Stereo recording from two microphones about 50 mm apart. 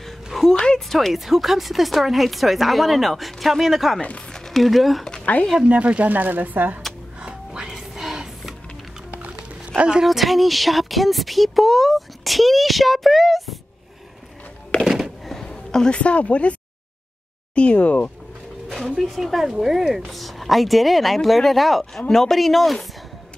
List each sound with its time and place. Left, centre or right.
0.0 s a sound: centre
0.5 s speech: centre
4.3 s a sound: centre
5.2 s speech: left
5.7 s speech: right
7.2 s music: centre
9.1 s dog: right
9.8 s a woman's voice: centre
10.0 s speech: centre
14.9 s a sound: centre
15.2 s a sound: centre
16.0 s speech: left
17.6 s speech: left
18.9 s speech: centre